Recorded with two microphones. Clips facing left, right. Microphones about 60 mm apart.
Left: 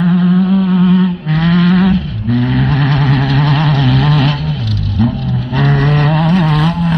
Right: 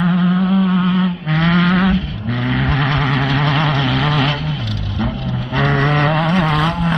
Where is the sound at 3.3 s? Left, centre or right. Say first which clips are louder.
Left 3 dB; right.